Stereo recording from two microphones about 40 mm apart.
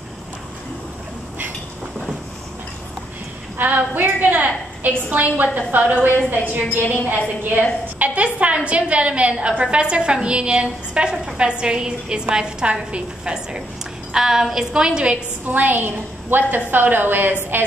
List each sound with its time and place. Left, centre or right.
3.5 s a woman's voice: right
8.0 s a woman's voice: right
14.1 s a sound: centre
14.7 s a woman's voice: right
15.4 s a woman's voice: right